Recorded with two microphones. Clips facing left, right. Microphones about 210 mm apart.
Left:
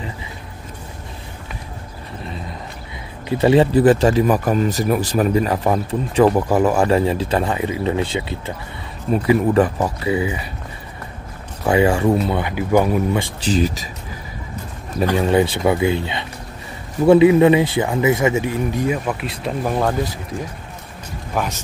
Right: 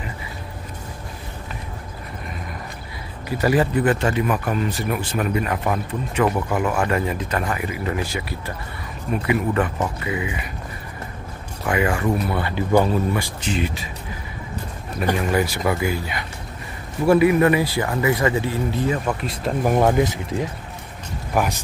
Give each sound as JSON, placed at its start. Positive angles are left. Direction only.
{"t": 3.3, "sound": "speech", "side_deg": 25}
{"t": 11.6, "sound": "speech", "side_deg": 30}
{"t": 13.4, "sound": "speech", "side_deg": 35}
{"t": 15.1, "sound": "speech", "side_deg": 30}
{"t": 19.6, "sound": "speech", "side_deg": -15}